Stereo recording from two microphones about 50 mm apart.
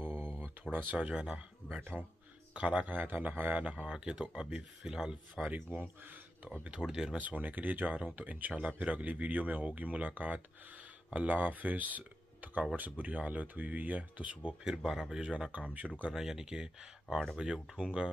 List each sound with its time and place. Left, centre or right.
0.7 s speech: right
0.9 s speech: right
1.8 s speech: right
2.5 s speech: right
2.9 s speech: right
3.8 s speech: centre
6.7 s speech: centre
7.2 s speech: right
14.6 s speech: centre
15.5 s speech: right
16.1 s speech: centre